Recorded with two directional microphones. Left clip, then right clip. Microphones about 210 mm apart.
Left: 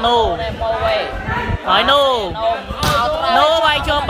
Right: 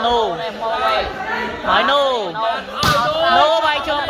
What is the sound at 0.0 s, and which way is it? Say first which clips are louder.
Speech: left 2 dB; 15° left (ahead or behind).